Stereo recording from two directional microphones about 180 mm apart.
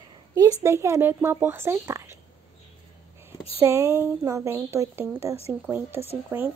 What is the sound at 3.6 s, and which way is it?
Speech, 15° right (ahead or behind).